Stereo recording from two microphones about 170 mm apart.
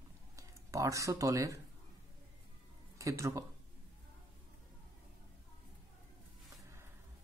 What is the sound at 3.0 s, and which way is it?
Speech, 20° right (ahead or behind).